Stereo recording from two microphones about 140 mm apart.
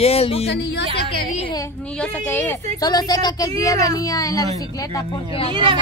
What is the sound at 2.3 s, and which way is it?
Speech, 15° left (ahead or behind).